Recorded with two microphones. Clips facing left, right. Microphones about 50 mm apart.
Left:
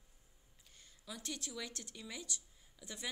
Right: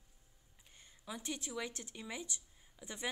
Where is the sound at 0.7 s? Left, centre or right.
Right.